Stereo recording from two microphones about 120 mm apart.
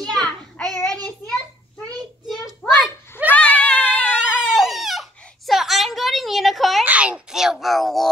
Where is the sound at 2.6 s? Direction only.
20° left (ahead or behind).